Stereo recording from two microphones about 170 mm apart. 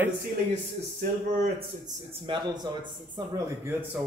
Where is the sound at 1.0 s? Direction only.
60° right (ahead or behind).